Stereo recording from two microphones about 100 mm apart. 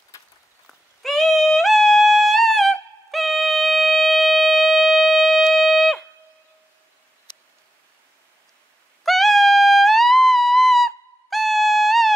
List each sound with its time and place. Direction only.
0.1 s a sound: 30° left (ahead or behind)
0.7 s music: centre (ahead or behind)
9.0 s music: centre (ahead or behind)